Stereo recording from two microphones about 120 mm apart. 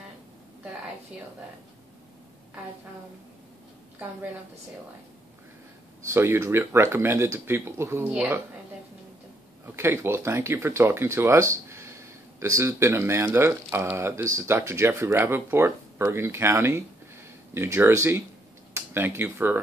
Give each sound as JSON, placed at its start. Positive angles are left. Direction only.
{"t": 6.1, "sound": "speech", "side_deg": -20}
{"t": 8.1, "sound": "speech", "side_deg": -10}
{"t": 9.8, "sound": "speech", "side_deg": -20}